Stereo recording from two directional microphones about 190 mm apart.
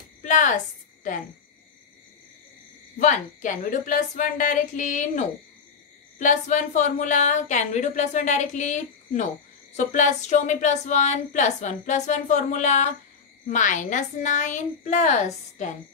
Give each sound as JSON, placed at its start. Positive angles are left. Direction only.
{"t": 0.2, "sound": "a woman's voice", "side_deg": 40}
{"t": 3.0, "sound": "a woman's voice", "side_deg": 40}